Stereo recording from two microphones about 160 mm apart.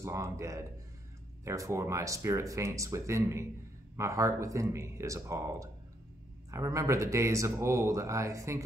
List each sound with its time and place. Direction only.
0.0 s speech: 20° right (ahead or behind)